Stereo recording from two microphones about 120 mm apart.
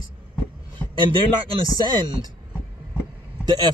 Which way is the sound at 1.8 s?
35° right (ahead or behind).